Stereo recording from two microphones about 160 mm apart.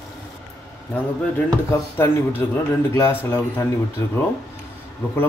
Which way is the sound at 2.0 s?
15° left (ahead or behind).